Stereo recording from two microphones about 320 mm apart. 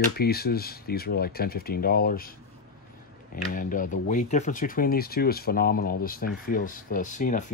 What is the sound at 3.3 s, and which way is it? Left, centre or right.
Speech, left.